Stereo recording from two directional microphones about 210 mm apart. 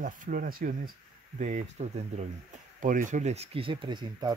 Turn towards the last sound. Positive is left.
turn(degrees=-20)  # may be behind; listen again after turning